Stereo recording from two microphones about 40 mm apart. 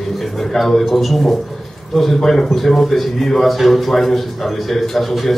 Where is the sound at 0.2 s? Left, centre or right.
Centre.